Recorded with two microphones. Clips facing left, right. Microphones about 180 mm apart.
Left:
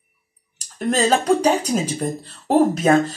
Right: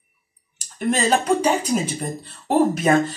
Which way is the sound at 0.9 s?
40° left (ahead or behind).